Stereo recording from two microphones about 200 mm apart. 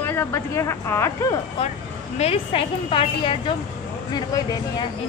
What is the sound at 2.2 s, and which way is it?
A woman's voice, 30° left (ahead or behind).